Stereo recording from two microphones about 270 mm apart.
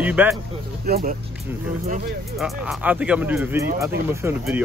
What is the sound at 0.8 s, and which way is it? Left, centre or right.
Speech, right.